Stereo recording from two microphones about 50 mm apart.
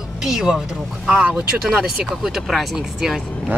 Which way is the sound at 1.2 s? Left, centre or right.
Right.